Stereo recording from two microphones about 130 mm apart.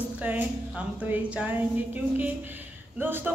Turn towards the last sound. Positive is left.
turn(degrees=-15)  # may be behind; listen again after turning